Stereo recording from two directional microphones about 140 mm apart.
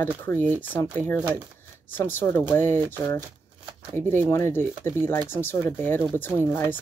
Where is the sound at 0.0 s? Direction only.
15° left (ahead or behind).